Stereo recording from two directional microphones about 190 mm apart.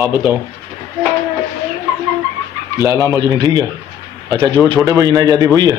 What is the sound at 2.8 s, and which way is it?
A man's voice, 15° right (ahead or behind).